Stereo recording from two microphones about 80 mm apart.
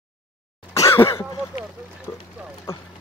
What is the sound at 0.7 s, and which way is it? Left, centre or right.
Cough, left.